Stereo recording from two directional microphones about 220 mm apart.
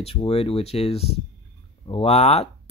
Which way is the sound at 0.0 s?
25° left (ahead or behind).